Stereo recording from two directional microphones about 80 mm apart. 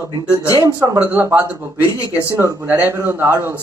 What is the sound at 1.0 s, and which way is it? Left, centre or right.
Speech, right.